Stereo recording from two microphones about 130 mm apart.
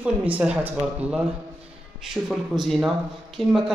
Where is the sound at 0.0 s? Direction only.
10° right (ahead or behind).